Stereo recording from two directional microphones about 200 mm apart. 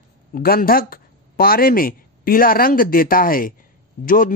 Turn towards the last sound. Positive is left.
turn(degrees=45)  # may be behind; listen again after turning